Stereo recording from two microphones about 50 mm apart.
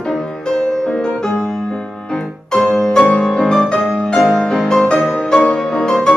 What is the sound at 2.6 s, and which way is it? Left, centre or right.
Music, centre.